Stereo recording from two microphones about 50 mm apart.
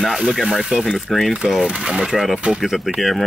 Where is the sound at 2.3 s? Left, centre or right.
Right.